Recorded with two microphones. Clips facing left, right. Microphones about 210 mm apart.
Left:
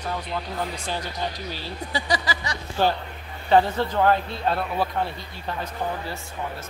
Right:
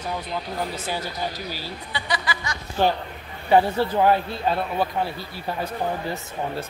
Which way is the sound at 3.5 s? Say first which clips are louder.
Right 1 dB; 10° right (ahead or behind).